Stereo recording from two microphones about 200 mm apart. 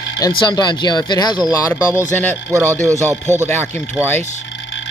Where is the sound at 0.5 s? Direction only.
20° left (ahead or behind).